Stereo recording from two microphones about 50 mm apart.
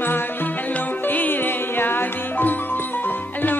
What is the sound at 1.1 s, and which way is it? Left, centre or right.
Music, left.